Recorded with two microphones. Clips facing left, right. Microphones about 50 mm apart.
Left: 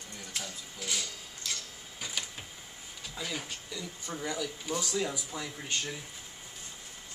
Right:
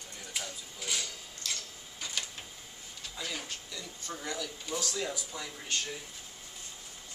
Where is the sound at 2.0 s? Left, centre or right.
Centre.